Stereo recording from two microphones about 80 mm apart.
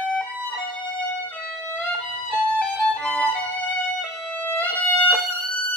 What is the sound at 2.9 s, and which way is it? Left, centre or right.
Music, centre.